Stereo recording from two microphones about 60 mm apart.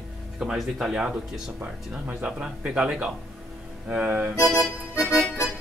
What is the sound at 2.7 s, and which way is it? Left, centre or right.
Speech, centre.